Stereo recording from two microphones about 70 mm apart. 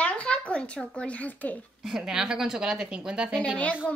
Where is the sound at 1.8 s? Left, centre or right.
Centre.